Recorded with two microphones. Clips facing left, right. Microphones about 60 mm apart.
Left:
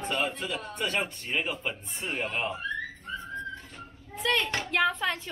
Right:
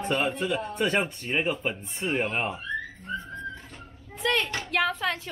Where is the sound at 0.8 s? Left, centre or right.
Right.